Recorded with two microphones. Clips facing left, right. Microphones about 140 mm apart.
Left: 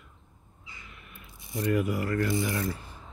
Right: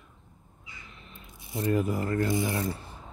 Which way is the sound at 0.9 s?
25° right (ahead or behind).